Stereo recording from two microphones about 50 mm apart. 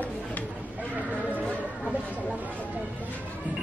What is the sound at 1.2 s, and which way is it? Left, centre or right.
Music, right.